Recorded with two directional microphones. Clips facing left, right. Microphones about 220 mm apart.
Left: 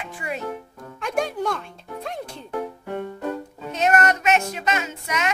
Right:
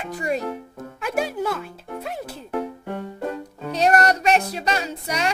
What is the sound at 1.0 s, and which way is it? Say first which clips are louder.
Speech: even; 5° right (ahead or behind).